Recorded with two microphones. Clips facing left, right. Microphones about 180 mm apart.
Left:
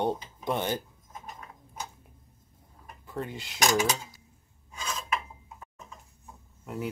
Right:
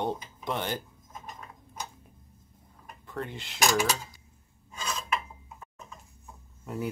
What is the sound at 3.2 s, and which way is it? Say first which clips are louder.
Cutlery: even; 10° left (ahead or behind).